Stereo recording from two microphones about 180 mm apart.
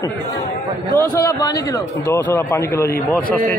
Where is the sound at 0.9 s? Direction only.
20° left (ahead or behind).